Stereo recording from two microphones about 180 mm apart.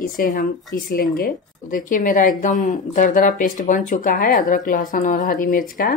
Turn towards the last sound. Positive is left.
turn(degrees=50)  # may be behind; listen again after turning